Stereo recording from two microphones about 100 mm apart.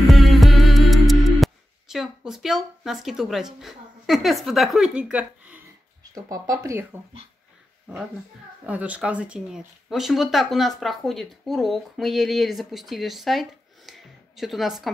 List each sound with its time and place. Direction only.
0.0 s music: centre (ahead or behind)
6.1 s speech: 35° right (ahead or behind)
8.6 s speech: 15° right (ahead or behind)